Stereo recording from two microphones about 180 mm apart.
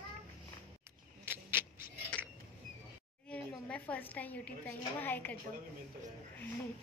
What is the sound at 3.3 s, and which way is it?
A woman's voice, 10° left (ahead or behind).